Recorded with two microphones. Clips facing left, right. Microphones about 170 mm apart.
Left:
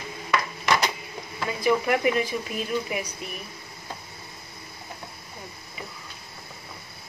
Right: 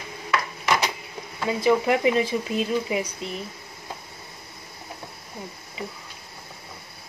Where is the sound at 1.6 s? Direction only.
25° right (ahead or behind).